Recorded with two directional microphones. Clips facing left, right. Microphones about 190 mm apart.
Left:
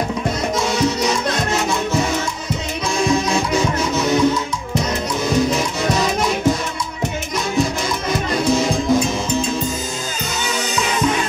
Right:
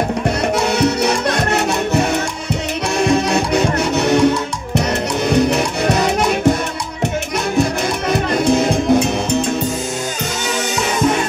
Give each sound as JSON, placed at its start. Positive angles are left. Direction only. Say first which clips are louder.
{"t": 0.6, "sound": "music", "louder": "right 2 dB", "side_deg": -65}
{"t": 8.1, "sound": "music", "louder": "right 3 dB", "side_deg": -60}